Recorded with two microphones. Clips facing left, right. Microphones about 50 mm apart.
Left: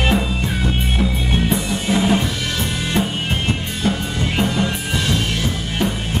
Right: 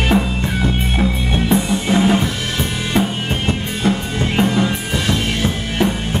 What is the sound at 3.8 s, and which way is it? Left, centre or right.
Music, centre.